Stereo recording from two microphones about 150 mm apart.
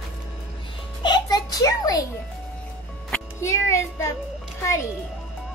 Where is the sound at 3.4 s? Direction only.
20° left (ahead or behind).